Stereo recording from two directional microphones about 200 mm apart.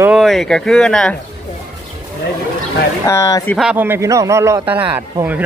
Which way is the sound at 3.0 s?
15° left (ahead or behind).